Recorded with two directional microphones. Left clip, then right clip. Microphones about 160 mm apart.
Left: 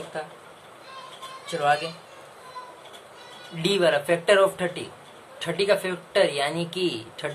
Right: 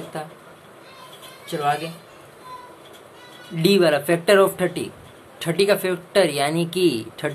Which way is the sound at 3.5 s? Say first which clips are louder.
Right 4 dB; 25° right (ahead or behind).